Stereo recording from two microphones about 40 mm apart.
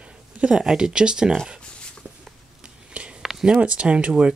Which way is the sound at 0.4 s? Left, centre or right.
Centre.